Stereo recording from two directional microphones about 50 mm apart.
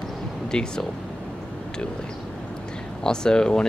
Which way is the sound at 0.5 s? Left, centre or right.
Centre.